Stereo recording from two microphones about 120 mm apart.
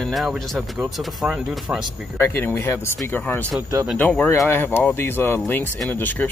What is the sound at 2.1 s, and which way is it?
Speech, 15° left (ahead or behind).